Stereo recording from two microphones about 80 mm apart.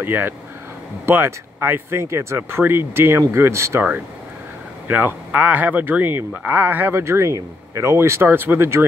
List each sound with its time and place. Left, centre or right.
0.0 s speech: right
4.8 s speech: right